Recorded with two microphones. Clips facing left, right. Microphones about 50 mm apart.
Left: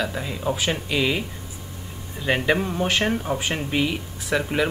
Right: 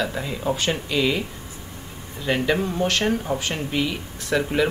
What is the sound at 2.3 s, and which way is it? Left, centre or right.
Speech, centre.